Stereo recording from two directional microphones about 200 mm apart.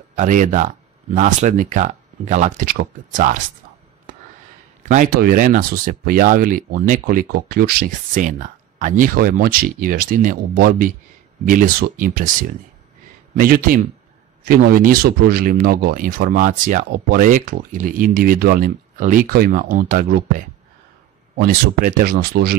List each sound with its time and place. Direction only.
0.1 s speech: 40° right (ahead or behind)
4.8 s speech: 40° right (ahead or behind)